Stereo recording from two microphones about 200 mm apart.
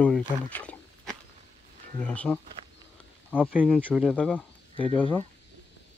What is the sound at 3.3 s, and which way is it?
Speech, 5° right (ahead or behind).